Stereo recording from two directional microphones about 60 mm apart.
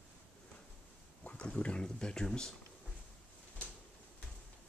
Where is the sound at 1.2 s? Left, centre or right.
Centre.